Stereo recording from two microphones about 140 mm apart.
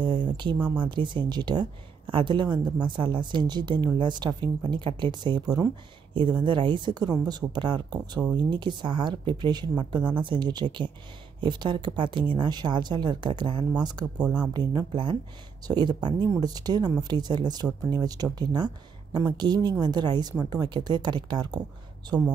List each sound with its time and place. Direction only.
0.0 s speech: 35° right (ahead or behind)